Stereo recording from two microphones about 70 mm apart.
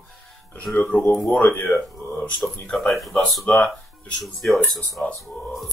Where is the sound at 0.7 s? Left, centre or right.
Centre.